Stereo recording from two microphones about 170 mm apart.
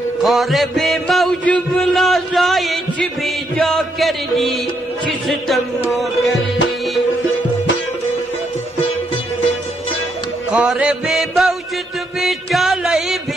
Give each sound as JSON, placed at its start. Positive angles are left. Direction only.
{"t": 0.2, "sound": "music", "side_deg": 0}
{"t": 10.5, "sound": "music", "side_deg": -5}